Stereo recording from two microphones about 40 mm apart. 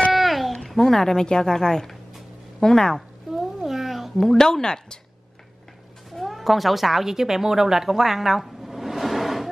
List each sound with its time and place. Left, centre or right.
0.1 s babbling: centre
1.2 s a woman's voice: centre
3.3 s a sound: centre
4.2 s a woman's voice: centre
6.1 s speech: centre